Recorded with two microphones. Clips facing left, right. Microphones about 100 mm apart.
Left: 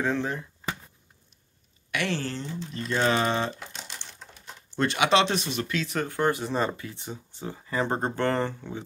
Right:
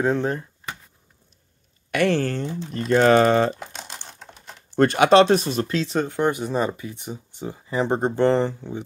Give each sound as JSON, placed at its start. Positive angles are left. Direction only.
{"t": 0.0, "sound": "speech", "side_deg": -35}
{"t": 1.9, "sound": "speech", "side_deg": -45}
{"t": 3.7, "sound": "typing", "side_deg": -50}
{"t": 4.7, "sound": "speech", "side_deg": -45}